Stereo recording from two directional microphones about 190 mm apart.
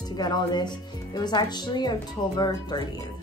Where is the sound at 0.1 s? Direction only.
20° left (ahead or behind).